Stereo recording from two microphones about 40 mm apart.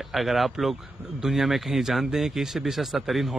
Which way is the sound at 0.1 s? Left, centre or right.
Centre.